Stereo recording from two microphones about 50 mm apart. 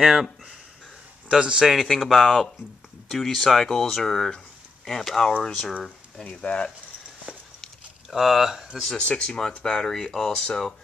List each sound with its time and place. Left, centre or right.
0.0 s speech: centre
1.7 s speech: centre
6.4 s speech: left
8.1 s speech: centre
8.9 s speech: left